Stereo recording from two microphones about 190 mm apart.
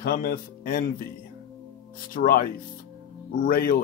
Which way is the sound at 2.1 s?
50° left (ahead or behind).